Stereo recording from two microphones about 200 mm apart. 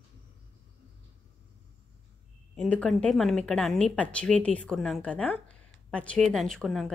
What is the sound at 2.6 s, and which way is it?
Speech, 5° left (ahead or behind).